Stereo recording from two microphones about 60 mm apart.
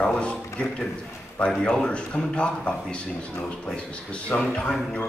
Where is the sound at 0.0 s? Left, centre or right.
Centre.